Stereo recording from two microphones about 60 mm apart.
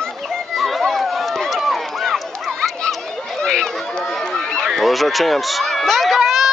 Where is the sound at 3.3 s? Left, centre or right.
Centre.